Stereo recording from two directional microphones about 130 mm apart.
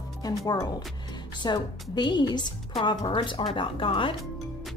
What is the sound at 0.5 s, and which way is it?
Speech, 30° left (ahead or behind).